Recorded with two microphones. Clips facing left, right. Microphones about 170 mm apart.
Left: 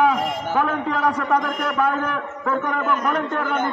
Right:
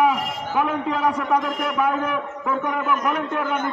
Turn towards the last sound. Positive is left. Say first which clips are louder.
# left 1 dB
turn(degrees=-10)  # may be behind; listen again after turning